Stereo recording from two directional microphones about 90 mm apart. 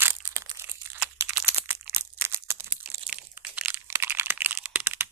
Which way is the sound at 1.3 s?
20° right (ahead or behind).